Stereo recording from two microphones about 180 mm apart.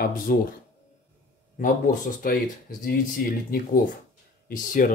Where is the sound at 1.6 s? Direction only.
50° left (ahead or behind).